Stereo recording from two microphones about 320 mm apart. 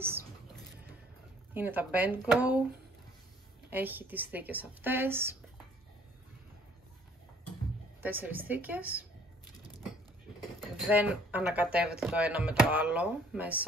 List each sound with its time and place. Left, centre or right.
1.5 s speech: centre
3.7 s speech: centre
8.0 s speech: centre
10.6 s speech: centre